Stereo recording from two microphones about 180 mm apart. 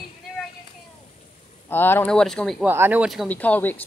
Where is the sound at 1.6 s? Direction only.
10° left (ahead or behind).